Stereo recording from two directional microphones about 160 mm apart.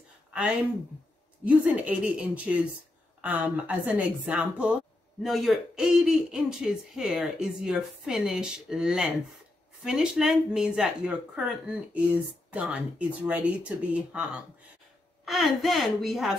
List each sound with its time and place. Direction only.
0.3 s a woman's voice: 5° right (ahead or behind)